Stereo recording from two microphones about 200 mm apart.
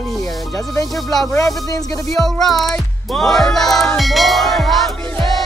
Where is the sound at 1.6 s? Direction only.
15° left (ahead or behind).